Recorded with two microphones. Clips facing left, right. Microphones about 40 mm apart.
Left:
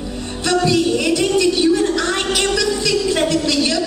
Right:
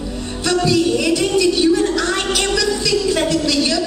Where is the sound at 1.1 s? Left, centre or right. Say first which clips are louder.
Even; left.